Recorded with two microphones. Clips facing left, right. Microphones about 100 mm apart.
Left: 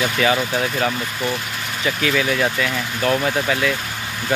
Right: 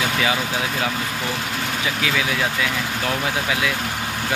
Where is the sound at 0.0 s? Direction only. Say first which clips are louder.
Left 3 dB; 10° right (ahead or behind).